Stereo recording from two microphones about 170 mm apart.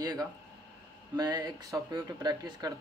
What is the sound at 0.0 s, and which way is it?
Speech, 25° right (ahead or behind).